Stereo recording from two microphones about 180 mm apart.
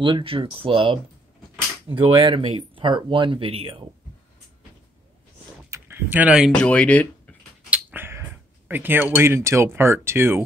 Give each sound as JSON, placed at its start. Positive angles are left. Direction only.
{"t": 0.0, "sound": "speech", "side_deg": -30}
{"t": 5.7, "sound": "speech", "side_deg": -10}
{"t": 7.7, "sound": "speech", "side_deg": -10}